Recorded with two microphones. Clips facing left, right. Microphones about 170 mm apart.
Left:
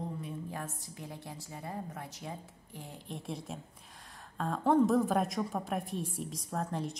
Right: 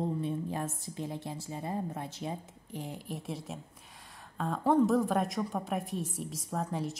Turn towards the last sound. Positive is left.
turn(degrees=0)  # may be behind; listen again after turning